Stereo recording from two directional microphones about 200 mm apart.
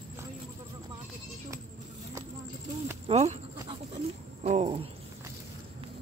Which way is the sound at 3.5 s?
30° right (ahead or behind).